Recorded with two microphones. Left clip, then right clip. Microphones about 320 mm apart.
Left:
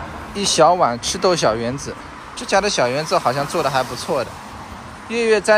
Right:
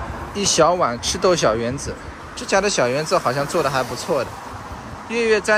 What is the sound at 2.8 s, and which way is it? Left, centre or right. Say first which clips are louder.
Speech: left 1 dB; centre.